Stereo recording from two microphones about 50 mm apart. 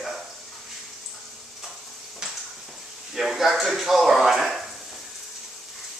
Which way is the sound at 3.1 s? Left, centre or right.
Centre.